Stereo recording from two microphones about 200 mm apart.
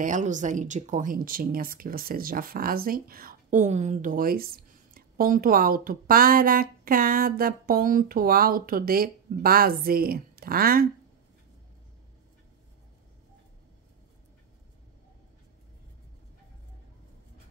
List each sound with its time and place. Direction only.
0.0 s speech: 40° right (ahead or behind)